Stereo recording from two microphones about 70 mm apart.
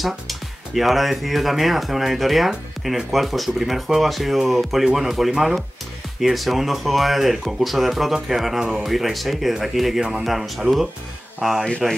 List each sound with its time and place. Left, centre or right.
0.0 s speech: centre